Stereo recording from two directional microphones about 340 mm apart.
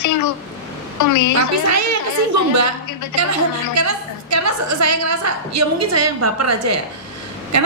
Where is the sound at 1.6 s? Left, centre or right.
Right.